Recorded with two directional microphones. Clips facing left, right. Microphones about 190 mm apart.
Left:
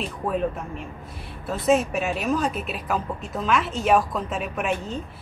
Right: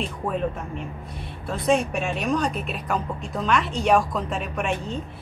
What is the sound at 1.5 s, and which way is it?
Speech, 5° left (ahead or behind).